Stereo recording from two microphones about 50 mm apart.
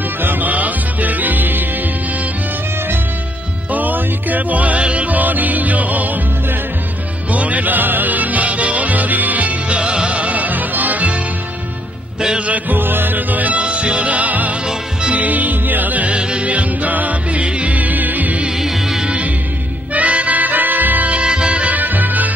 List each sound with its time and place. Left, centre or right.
0.2 s music: right
3.7 s music: right
7.3 s music: right
12.2 s music: centre
12.4 s music: right
13.6 s music: right
18.6 s music: centre
19.9 s music: right